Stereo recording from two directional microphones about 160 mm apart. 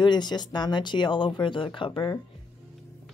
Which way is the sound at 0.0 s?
25° left (ahead or behind).